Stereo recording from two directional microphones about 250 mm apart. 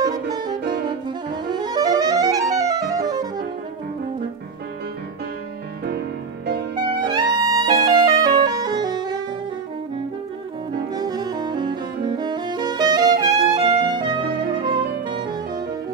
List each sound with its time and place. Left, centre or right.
0.0 s saxophone: centre
1.3 s music: centre
5.9 s music: right
7.1 s music: centre
11.0 s saxophone: centre